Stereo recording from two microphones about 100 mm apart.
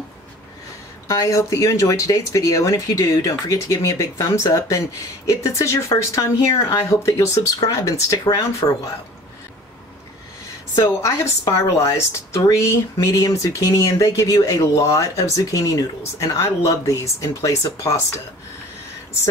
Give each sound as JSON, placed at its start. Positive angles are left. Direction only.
{"t": 1.0, "sound": "speech", "side_deg": 35}
{"t": 10.8, "sound": "speech", "side_deg": 30}